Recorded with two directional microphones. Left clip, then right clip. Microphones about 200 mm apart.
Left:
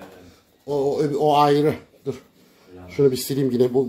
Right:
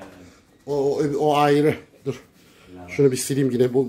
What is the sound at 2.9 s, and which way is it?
Speech, 5° right (ahead or behind).